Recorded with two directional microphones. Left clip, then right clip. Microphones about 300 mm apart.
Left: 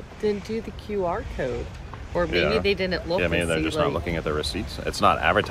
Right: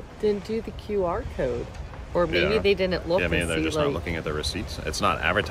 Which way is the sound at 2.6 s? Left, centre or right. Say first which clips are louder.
Right 1 dB; centre.